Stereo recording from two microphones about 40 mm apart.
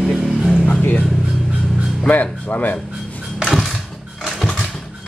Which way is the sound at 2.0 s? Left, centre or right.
Left.